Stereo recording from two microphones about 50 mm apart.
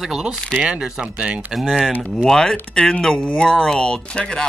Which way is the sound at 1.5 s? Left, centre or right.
Centre.